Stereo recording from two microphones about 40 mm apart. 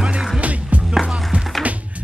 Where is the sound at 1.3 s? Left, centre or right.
Right.